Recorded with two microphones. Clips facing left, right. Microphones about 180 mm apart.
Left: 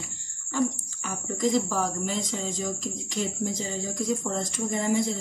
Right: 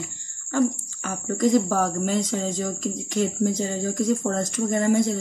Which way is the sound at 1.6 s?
50° right (ahead or behind).